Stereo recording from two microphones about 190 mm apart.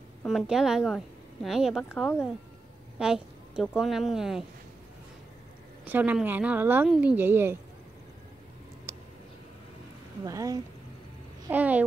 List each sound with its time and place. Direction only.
0.2 s a woman's voice: centre (ahead or behind)
3.0 s a woman's voice: 5° right (ahead or behind)
5.9 s speech: 10° right (ahead or behind)
10.2 s speech: 20° right (ahead or behind)
11.4 s speech: 10° right (ahead or behind)